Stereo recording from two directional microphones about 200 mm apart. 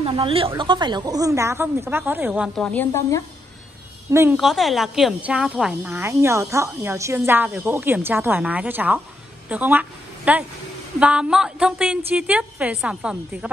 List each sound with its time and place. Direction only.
0.0 s speech: 25° right (ahead or behind); by 2.6 s 5° right (ahead or behind)
2.6 s a woman's voice: 10° left (ahead or behind)
4.1 s speech: 10° right (ahead or behind)
4.4 s a woman's voice: centre (ahead or behind)